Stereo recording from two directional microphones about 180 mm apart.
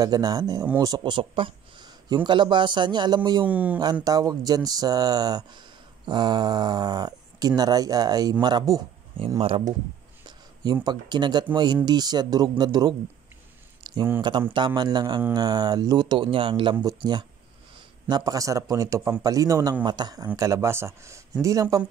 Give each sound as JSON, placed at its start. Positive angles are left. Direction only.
{"t": 0.0, "sound": "speech", "side_deg": -20}
{"t": 3.4, "sound": "a man's voice", "side_deg": -10}
{"t": 3.8, "sound": "speech", "side_deg": -20}
{"t": 9.4, "sound": "speech", "side_deg": -30}
{"t": 13.9, "sound": "a sound", "side_deg": -25}
{"t": 14.5, "sound": "a man's voice", "side_deg": -25}